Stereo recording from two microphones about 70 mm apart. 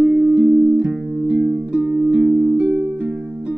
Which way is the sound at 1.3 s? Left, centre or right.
Right.